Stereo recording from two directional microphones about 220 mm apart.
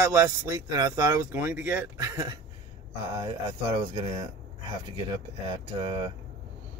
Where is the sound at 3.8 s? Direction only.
20° right (ahead or behind).